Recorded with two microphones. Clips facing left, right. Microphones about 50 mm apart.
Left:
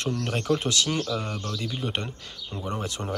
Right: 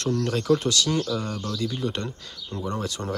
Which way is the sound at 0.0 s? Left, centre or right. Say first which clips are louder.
Right 3 dB; centre.